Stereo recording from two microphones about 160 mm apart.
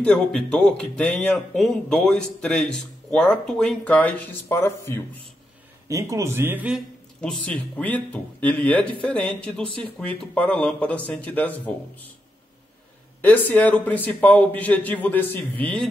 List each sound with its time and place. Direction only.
0.0 s speech: 5° left (ahead or behind)
5.9 s a man's voice: 20° right (ahead or behind)
7.2 s speech: 5° left (ahead or behind)
13.2 s speech: 10° left (ahead or behind)